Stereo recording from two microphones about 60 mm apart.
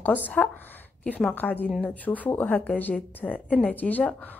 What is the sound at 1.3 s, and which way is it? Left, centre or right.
A woman's voice, left.